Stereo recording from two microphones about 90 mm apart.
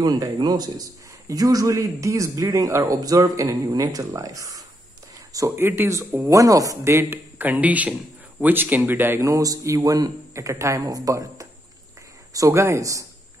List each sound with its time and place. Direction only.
0.0 s a man's voice: 40° right (ahead or behind)
5.6 s speech: 25° right (ahead or behind)
6.3 s a man's voice: 40° right (ahead or behind)
7.3 s speech: 20° right (ahead or behind)
9.2 s a man's voice: 40° right (ahead or behind)